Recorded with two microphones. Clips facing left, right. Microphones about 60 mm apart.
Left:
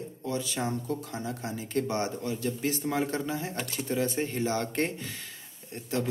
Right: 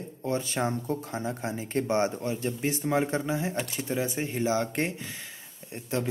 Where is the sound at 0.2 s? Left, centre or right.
Right; by 4.9 s centre.